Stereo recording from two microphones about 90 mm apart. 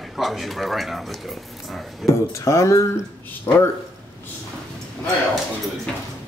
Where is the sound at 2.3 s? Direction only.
35° left (ahead or behind).